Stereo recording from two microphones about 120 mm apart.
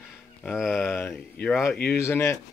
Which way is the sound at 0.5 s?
Centre (ahead or behind).